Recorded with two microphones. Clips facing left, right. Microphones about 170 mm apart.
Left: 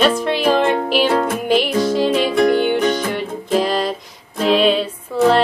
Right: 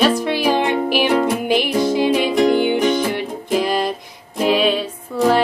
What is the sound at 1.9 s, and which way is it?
Music, 15° right (ahead or behind).